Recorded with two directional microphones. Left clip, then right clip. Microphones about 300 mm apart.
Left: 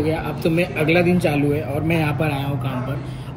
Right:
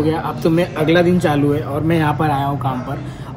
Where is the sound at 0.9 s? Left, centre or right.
Centre.